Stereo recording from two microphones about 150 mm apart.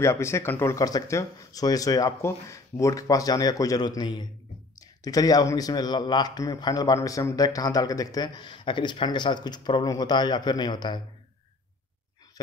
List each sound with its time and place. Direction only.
0.0 s speech: 20° left (ahead or behind)